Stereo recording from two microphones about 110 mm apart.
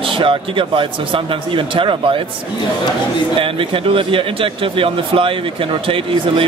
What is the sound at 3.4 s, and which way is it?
Speech, 55° right (ahead or behind).